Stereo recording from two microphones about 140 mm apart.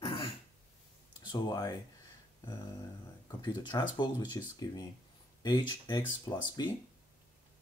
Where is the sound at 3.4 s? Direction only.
35° left (ahead or behind).